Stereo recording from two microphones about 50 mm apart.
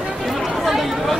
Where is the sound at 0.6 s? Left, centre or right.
Centre.